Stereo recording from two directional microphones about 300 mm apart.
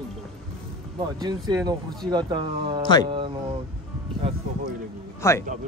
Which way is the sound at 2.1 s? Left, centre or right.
Centre.